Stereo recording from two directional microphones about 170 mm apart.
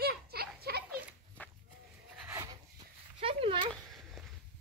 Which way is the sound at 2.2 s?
15° right (ahead or behind).